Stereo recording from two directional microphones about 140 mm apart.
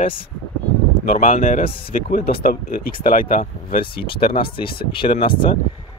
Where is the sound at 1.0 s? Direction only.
70° left (ahead or behind); by 3.8 s 90° left.